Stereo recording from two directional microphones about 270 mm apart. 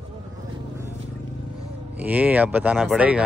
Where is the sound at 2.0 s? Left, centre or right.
Centre.